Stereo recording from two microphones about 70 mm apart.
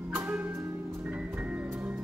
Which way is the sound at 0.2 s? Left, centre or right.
Right.